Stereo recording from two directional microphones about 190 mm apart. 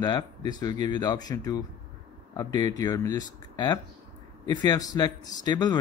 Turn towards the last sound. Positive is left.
turn(degrees=20)  # may be behind; listen again after turning